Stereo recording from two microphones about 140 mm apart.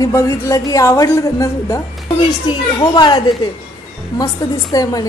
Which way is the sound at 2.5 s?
35° left (ahead or behind).